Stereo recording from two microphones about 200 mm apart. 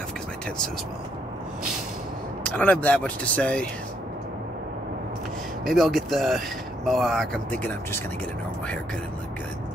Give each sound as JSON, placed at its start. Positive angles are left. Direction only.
{"t": 2.4, "sound": "speech", "side_deg": 5}
{"t": 5.7, "sound": "speech", "side_deg": 0}